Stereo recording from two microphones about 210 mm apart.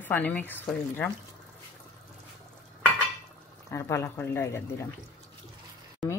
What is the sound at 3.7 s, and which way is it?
Speech, 15° left (ahead or behind).